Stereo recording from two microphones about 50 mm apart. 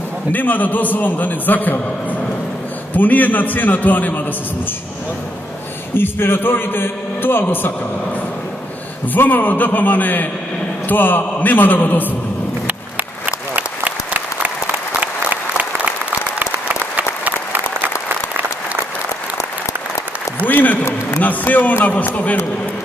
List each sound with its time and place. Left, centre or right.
0.3 s a man's voice: left
2.9 s a man's voice: left
5.9 s a man's voice: left
9.1 s a man's voice: left
13.6 s applause: right
20.4 s applause: left
21.2 s a sound: left
21.8 s a man's voice: left